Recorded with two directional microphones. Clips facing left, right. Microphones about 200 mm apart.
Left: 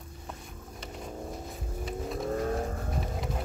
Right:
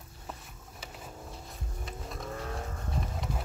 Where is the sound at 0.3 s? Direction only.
Centre (ahead or behind).